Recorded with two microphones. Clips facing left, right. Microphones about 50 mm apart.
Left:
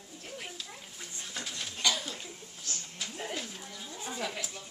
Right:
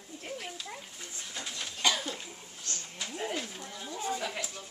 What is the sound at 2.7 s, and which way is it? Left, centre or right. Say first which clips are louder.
A woman's voice: right 1 dB; centre.